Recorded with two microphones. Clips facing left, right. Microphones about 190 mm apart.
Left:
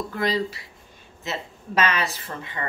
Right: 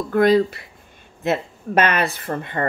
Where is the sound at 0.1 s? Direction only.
55° right (ahead or behind).